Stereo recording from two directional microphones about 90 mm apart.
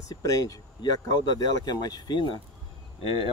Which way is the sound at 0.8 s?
55° left (ahead or behind).